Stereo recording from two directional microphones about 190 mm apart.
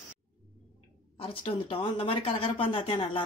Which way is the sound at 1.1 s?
30° left (ahead or behind).